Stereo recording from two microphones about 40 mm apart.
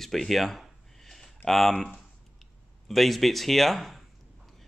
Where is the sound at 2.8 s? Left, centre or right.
Centre.